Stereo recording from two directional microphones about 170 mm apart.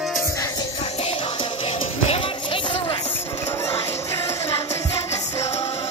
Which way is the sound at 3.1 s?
15° left (ahead or behind).